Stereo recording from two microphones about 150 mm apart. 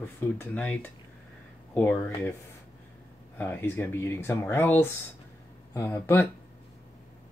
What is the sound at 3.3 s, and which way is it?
Speech, 10° left (ahead or behind).